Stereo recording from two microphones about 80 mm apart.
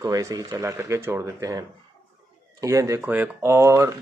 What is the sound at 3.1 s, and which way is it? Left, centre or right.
Speech, right.